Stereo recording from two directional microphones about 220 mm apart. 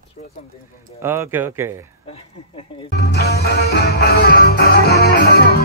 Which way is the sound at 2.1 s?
25° left (ahead or behind).